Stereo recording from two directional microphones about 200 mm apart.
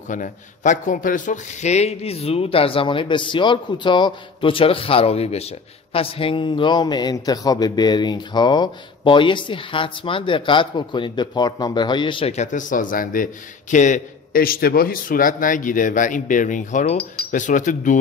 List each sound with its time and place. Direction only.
0.1 s a man's voice: 40° left (ahead or behind)